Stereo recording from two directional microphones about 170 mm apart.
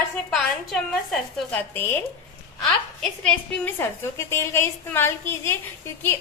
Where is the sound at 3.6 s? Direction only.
15° left (ahead or behind).